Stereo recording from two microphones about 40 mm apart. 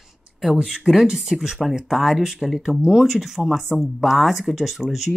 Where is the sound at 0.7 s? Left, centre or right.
Centre.